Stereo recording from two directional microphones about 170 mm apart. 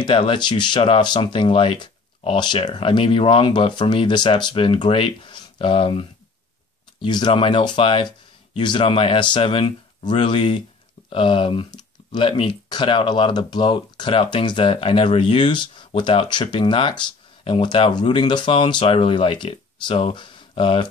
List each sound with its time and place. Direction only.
0.0 s speech: 30° left (ahead or behind)